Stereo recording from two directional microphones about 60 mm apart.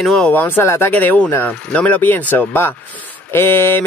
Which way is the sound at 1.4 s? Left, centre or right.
Left.